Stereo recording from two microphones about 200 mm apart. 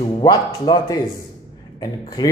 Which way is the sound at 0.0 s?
20° left (ahead or behind).